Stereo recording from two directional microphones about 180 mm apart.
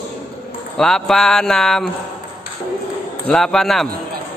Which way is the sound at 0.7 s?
5° left (ahead or behind).